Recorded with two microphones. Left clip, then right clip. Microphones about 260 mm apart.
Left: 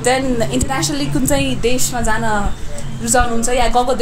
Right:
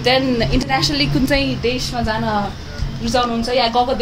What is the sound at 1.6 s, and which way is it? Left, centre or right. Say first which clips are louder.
Speech: left 2 dB; left.